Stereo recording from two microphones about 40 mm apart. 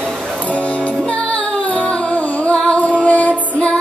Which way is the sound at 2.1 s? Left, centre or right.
Left.